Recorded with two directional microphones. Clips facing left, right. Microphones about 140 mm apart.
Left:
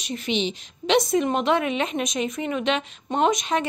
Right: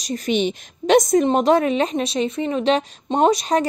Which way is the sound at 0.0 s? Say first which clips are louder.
Right 5 dB; 40° right (ahead or behind).